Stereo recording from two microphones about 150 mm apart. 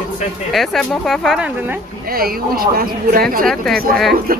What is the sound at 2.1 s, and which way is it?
Speech, 80° right.